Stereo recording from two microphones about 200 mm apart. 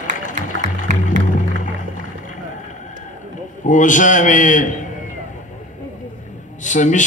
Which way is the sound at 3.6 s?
40° left (ahead or behind).